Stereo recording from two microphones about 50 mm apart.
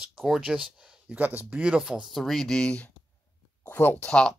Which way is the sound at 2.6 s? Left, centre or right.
Left.